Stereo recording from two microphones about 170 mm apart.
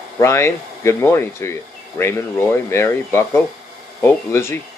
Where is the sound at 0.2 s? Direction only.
15° left (ahead or behind).